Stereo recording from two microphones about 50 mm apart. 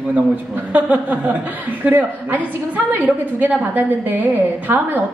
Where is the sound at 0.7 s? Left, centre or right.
Right.